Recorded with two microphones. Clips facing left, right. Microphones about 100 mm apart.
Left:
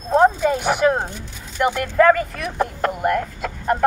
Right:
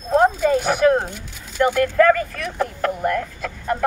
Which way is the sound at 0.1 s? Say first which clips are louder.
Even; 20° left (ahead or behind).